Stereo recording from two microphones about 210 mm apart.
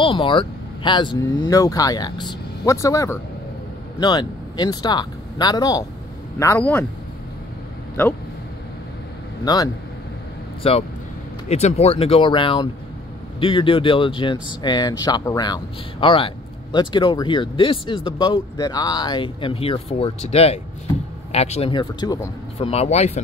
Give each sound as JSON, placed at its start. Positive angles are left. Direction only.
{"t": 0.0, "sound": "speech", "side_deg": 25}
{"t": 9.4, "sound": "speech", "side_deg": 20}
{"t": 22.7, "sound": "speech", "side_deg": 30}